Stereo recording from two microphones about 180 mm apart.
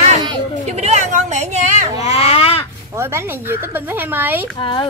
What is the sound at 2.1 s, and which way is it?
Baby cry, 35° left (ahead or behind).